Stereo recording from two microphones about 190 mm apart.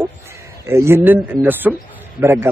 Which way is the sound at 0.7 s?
15° right (ahead or behind).